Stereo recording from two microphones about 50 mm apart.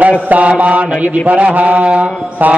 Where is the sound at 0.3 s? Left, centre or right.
Right.